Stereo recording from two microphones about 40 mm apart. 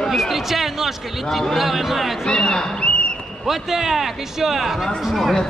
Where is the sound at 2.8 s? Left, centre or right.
Left.